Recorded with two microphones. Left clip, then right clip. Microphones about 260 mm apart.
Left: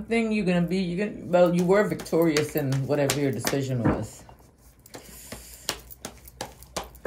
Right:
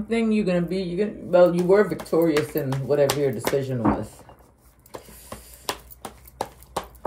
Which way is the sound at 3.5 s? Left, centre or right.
Right.